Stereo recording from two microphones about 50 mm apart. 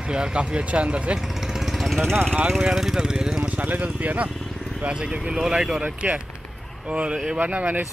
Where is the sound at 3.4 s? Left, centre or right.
Right.